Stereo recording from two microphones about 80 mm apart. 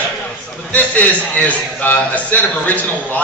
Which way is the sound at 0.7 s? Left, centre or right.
Centre.